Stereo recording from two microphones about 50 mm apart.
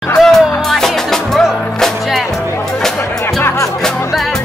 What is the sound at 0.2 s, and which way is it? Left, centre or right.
Music, centre.